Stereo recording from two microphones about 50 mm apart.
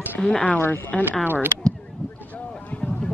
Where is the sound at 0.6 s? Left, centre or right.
Left.